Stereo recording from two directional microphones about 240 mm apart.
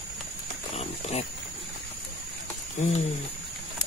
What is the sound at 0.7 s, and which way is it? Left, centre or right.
Pig, left.